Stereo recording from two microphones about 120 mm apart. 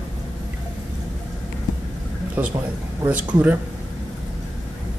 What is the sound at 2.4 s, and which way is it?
Speech, 15° right (ahead or behind).